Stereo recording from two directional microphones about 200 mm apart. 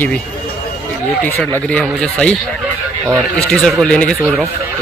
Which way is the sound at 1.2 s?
5° left (ahead or behind).